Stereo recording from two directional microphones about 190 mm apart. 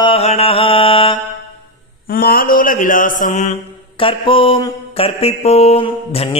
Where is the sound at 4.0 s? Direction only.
30° left (ahead or behind).